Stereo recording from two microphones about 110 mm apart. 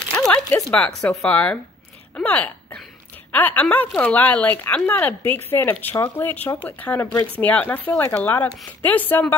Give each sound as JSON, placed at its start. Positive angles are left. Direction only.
{"t": 0.2, "sound": "speech", "side_deg": 5}